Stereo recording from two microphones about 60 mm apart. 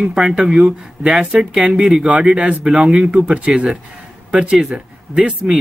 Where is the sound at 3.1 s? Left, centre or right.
Centre.